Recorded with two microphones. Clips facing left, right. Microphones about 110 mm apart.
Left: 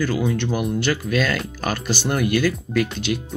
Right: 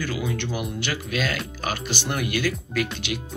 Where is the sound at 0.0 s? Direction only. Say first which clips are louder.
Left 6 dB; 40° left (ahead or behind).